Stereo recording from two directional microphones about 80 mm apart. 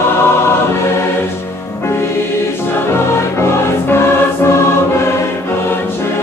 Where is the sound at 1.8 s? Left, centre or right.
Left.